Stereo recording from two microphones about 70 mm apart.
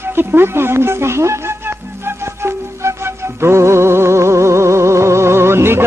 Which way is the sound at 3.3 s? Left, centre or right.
Right.